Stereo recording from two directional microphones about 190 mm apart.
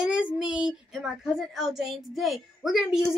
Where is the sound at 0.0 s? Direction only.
5° right (ahead or behind).